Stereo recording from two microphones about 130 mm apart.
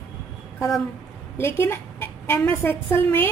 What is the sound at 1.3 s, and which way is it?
A woman's voice, 20° left (ahead or behind).